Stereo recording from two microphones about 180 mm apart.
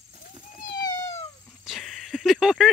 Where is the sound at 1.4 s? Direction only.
Centre (ahead or behind).